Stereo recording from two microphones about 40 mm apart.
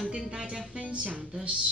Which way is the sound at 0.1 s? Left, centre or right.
Centre.